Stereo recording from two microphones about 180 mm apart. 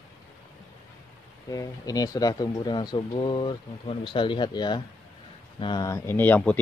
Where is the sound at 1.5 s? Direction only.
20° left (ahead or behind).